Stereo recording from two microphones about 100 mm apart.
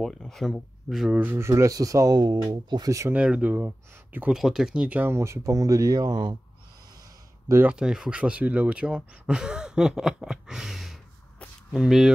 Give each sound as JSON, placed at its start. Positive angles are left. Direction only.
{"t": 0.0, "sound": "speech", "side_deg": 5}
{"t": 1.2, "sound": "speech", "side_deg": -25}
{"t": 3.1, "sound": "speech", "side_deg": -10}
{"t": 4.3, "sound": "speech", "side_deg": -5}
{"t": 7.6, "sound": "speech", "side_deg": -10}